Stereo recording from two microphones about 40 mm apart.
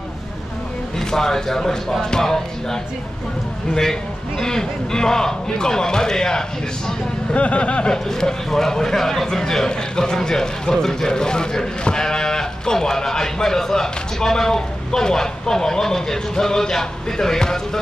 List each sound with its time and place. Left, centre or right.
0.9 s a man's voice: centre
4.4 s a man's voice: centre
7.3 s speech: left
7.9 s a man's voice: centre